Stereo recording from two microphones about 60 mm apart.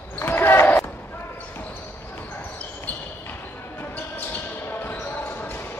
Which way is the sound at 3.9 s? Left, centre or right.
Left.